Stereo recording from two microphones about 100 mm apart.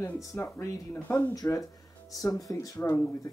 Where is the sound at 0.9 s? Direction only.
15° left (ahead or behind).